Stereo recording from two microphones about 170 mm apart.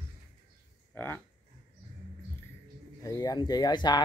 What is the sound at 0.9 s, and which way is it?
Speech, 10° left (ahead or behind).